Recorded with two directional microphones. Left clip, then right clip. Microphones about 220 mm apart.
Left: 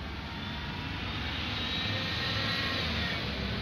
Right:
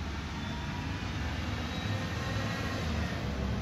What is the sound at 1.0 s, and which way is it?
Vehicle, 30° right (ahead or behind).